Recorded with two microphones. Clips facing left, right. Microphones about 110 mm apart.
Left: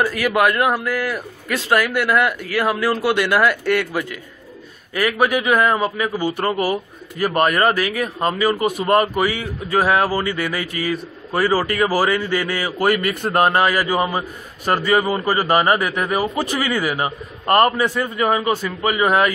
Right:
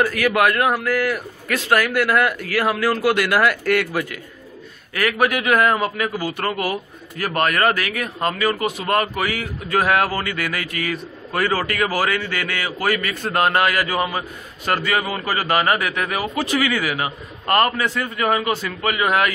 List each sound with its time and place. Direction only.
0.0 s a man's voice: 5° left (ahead or behind)
4.9 s a man's voice: 10° left (ahead or behind)
6.4 s speech: 35° left (ahead or behind)
7.2 s speech: 15° left (ahead or behind)
8.5 s a man's voice: 15° left (ahead or behind)
8.8 s speech: 25° left (ahead or behind)
17.8 s a man's voice: 15° left (ahead or behind)
18.9 s speech: 30° left (ahead or behind)